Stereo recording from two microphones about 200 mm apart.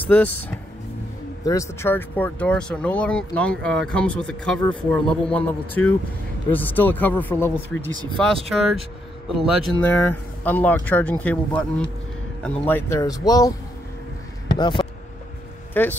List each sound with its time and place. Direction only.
0.0 s speech: 10° left (ahead or behind)
8.5 s speech: centre (ahead or behind); by 13.5 s 20° left (ahead or behind)
14.6 s speech: 25° left (ahead or behind)
15.7 s speech: 10° left (ahead or behind)